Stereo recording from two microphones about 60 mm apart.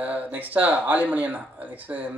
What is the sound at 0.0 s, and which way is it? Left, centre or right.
Speech, right.